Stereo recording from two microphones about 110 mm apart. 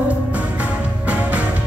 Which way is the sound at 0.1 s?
15° right (ahead or behind).